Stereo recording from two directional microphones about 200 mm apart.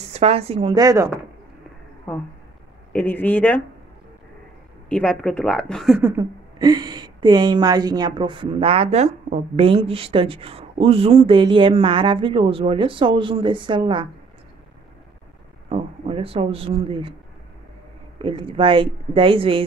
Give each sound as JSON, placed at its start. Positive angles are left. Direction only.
{"t": 0.1, "sound": "speech", "side_deg": -30}
{"t": 2.9, "sound": "speech", "side_deg": 10}
{"t": 4.8, "sound": "speech", "side_deg": 5}
{"t": 6.1, "sound": "speech", "side_deg": -20}
{"t": 15.7, "sound": "speech", "side_deg": -30}
{"t": 18.2, "sound": "speech", "side_deg": -25}